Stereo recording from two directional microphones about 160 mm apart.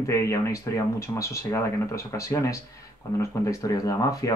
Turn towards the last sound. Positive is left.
turn(degrees=20)  # may be behind; listen again after turning